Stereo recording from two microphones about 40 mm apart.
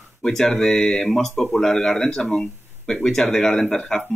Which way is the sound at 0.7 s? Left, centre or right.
Centre.